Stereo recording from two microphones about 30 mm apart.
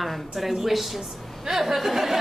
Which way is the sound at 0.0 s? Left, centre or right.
Centre.